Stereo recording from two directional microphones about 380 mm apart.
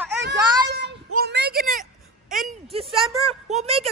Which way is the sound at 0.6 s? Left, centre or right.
Right.